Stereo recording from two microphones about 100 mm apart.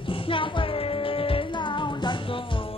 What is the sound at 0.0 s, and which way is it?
Music, 60° left (ahead or behind).